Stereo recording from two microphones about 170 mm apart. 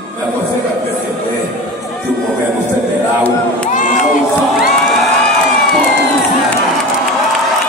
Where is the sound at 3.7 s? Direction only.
50° left (ahead or behind).